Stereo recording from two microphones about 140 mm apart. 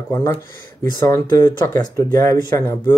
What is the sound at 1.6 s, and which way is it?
Speech, 30° left (ahead or behind).